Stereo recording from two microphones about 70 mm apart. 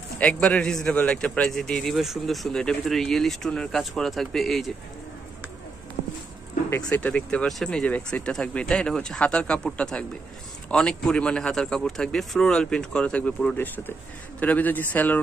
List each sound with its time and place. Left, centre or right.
0.2 s speech: centre
6.8 s a man's voice: centre
7.4 s a man's voice: centre; by 15.1 s left